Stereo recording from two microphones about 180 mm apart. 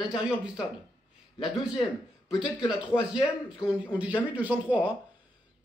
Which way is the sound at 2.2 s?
5° right (ahead or behind).